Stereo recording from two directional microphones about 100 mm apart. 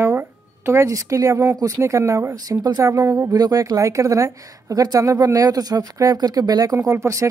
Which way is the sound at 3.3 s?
40° right (ahead or behind).